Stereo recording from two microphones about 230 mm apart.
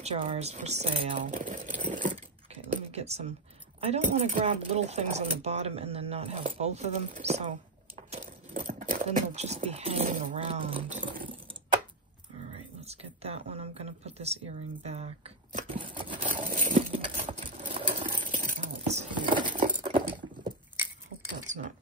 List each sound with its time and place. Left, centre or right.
0.0 s speech: right
12.5 s speech: right
16.3 s patter: right
18.4 s patter: right
21.5 s a sound: right